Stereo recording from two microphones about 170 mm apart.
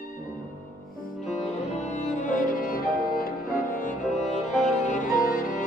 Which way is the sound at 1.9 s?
50° left (ahead or behind).